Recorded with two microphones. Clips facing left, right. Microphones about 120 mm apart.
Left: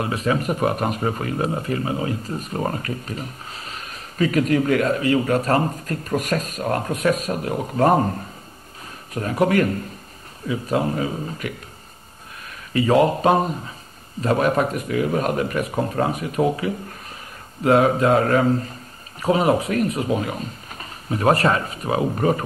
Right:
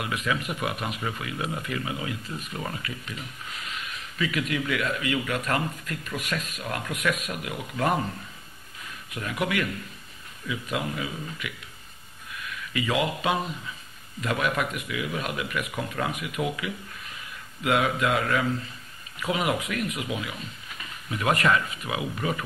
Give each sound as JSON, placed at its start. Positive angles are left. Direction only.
{"t": 0.0, "sound": "speech", "side_deg": 35}